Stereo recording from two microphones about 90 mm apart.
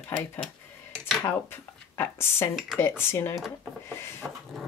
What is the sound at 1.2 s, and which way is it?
Speech, 25° left (ahead or behind).